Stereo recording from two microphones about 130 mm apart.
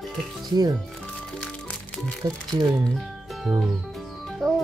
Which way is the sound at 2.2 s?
30° right (ahead or behind).